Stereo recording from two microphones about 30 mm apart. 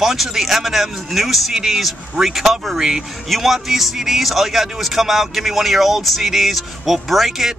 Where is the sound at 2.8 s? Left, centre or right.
Centre.